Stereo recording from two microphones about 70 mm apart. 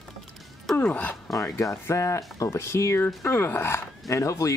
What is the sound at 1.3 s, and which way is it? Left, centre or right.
Speech, left.